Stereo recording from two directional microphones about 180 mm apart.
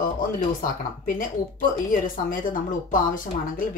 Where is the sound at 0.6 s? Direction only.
50° left (ahead or behind).